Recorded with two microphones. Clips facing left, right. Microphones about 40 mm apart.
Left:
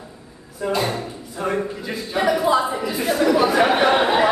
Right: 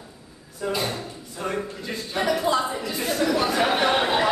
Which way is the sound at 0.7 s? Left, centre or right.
Left.